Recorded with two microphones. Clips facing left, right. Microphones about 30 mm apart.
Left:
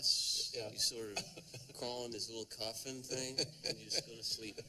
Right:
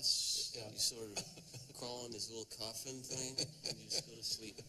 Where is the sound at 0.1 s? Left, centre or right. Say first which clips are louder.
Left 2 dB; left.